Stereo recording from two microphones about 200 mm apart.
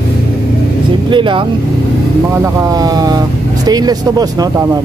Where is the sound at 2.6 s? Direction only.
20° right (ahead or behind).